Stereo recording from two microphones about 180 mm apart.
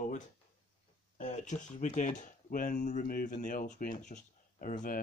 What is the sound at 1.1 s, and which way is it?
Speech, 45° left (ahead or behind).